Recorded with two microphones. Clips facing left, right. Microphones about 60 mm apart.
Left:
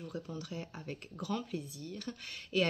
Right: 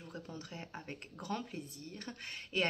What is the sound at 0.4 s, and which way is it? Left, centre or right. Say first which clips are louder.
Speech: left 3 dB; right.